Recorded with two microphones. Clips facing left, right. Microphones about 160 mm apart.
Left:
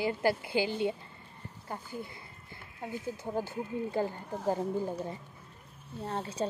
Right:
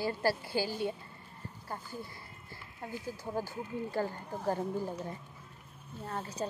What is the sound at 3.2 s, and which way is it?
Speech, 20° left (ahead or behind).